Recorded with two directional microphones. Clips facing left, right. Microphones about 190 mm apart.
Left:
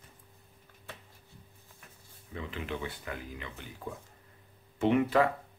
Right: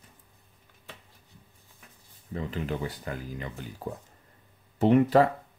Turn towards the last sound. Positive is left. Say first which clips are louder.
# right 5 dB
turn(degrees=-35)  # may be behind; listen again after turning